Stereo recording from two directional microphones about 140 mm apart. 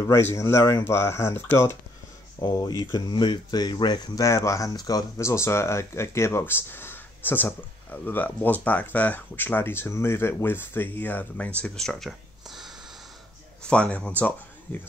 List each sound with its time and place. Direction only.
0.0 s speech: 20° left (ahead or behind)
2.4 s speech: 30° left (ahead or behind); by 14.8 s 10° left (ahead or behind)